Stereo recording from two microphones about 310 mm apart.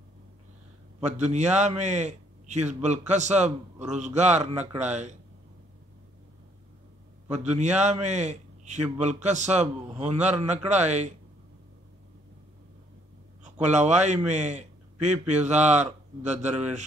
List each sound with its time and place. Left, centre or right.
1.0 s a man's voice: right
7.2 s a man's voice: right
13.4 s a man's voice: right